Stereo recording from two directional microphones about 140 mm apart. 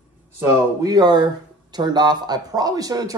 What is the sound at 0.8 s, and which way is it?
A man's voice, 30° right (ahead or behind).